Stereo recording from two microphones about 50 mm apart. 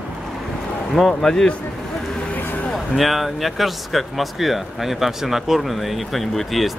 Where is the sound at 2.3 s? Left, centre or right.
Left.